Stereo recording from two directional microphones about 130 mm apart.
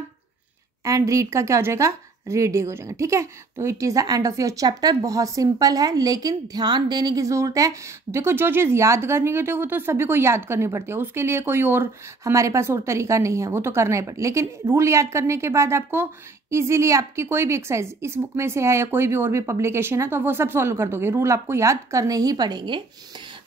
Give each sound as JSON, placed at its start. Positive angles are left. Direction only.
{"t": 0.8, "sound": "a woman's voice", "side_deg": -25}